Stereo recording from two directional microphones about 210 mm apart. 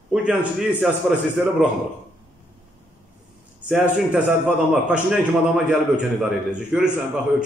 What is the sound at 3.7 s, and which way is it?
Speech, 5° right (ahead or behind).